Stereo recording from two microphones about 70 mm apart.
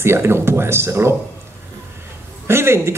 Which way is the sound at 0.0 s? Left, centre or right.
Right.